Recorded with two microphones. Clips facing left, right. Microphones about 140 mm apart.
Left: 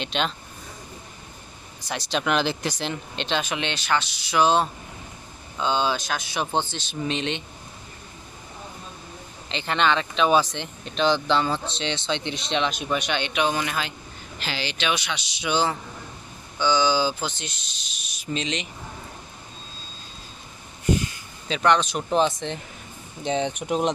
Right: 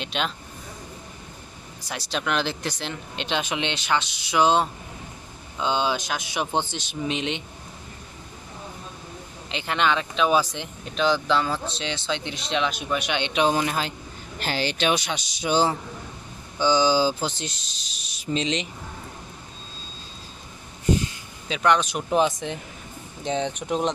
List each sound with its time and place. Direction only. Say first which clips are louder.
0.0 s speech: left 2 dB; 5° right (ahead or behind)
1.9 s speech: left 3 dB; 5° right (ahead or behind)
3.2 s speech: right 1 dB; 15° right (ahead or behind)
9.5 s speech: left 1 dB; 10° right (ahead or behind)
13.3 s speech: right 4 dB; 30° right (ahead or behind)
14.4 s speech: right 4 dB; 45° right (ahead or behind); by 18.7 s 30° right (ahead or behind)
21.5 s speech: left 1 dB; 10° right (ahead or behind)
23.2 s speech: left 1 dB; centre (ahead or behind)